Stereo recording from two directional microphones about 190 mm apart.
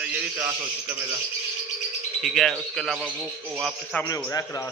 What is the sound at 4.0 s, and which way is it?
Speech, 15° left (ahead or behind).